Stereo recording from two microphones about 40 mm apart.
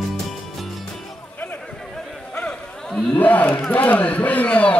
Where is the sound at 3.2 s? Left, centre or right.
Left.